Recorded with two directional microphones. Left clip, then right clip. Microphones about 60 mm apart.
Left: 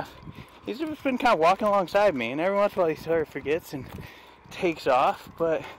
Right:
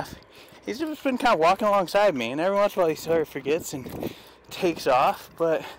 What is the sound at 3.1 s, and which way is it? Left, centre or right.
Speech, right.